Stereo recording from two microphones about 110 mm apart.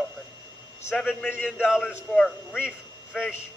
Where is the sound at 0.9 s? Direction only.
10° left (ahead or behind).